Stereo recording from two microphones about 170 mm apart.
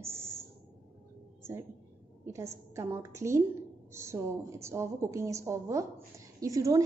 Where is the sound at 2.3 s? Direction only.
15° right (ahead or behind).